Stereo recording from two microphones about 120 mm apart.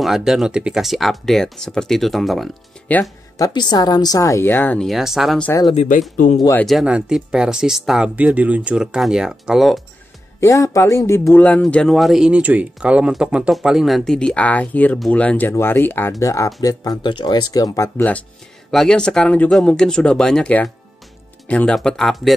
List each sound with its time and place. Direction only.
0.0 s speech: 5° right (ahead or behind)
2.9 s a woman's voice: 25° left (ahead or behind)
4.8 s speech: centre (ahead or behind)
5.8 s speech: 90° left
6.6 s speech: 5° right (ahead or behind)
10.4 s a woman's voice: 25° left (ahead or behind)
11.3 s a woman's voice: 10° left (ahead or behind)
18.7 s speech: 5° left (ahead or behind)